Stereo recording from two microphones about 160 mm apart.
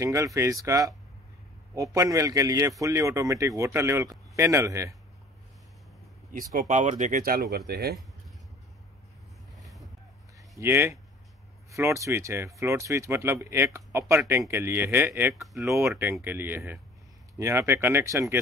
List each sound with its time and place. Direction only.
0.0 s speech: 20° right (ahead or behind)
6.3 s speech: 60° right (ahead or behind); by 8.0 s 85° right
9.6 s vehicle: centre (ahead or behind)
10.6 s speech: 15° right (ahead or behind)
15.4 s speech: centre (ahead or behind)
15.7 s speech: 15° right (ahead or behind)